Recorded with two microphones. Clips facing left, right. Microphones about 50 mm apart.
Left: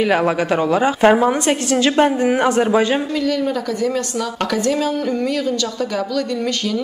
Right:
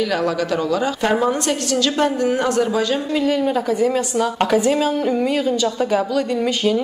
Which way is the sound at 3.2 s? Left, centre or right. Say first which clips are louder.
Right 1 dB; right.